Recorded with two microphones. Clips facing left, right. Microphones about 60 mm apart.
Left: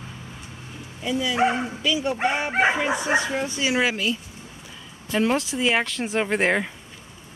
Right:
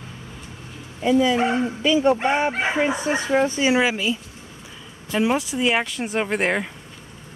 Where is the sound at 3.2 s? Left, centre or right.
Right.